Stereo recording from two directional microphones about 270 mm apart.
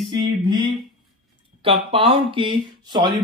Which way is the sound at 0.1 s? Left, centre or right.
Centre.